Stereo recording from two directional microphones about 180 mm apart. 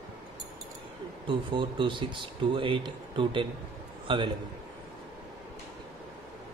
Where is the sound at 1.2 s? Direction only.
25° right (ahead or behind).